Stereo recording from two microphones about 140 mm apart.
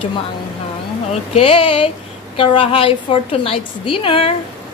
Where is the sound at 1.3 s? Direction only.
40° left (ahead or behind).